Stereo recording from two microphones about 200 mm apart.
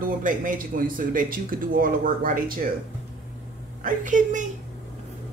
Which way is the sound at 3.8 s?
40° right (ahead or behind).